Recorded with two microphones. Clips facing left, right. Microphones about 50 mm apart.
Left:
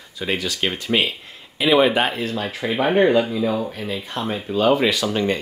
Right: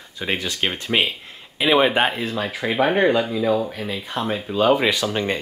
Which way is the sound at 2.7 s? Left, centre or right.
Centre.